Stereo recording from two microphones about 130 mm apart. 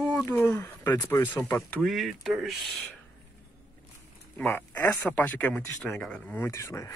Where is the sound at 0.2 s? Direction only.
15° left (ahead or behind).